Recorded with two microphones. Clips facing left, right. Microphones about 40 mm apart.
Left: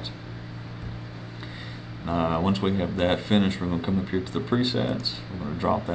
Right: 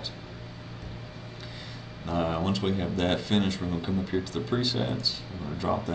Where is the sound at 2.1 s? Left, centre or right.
Centre.